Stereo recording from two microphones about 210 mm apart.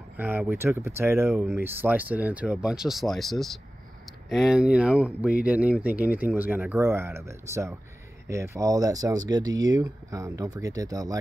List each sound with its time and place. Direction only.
0.2 s speech: 10° right (ahead or behind)